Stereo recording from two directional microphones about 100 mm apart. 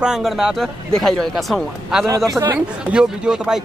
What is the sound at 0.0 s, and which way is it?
Speech, 5° right (ahead or behind).